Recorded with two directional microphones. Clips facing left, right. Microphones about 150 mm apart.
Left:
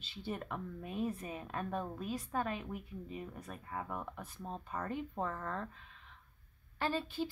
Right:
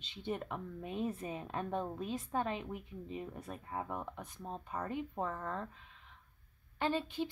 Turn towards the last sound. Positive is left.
turn(degrees=-20)  # may be behind; listen again after turning